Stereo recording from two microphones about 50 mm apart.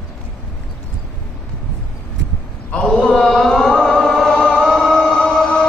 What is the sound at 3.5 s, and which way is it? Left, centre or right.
Music, centre.